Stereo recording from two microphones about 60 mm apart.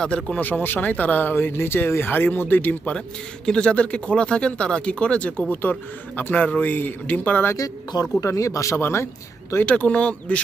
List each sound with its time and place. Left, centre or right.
0.0 s speech: centre
0.4 s speech: left
1.3 s speech: left
3.4 s speech: centre
5.5 s speech: left
7.5 s speech: left
8.7 s speech: left
9.7 s speech: left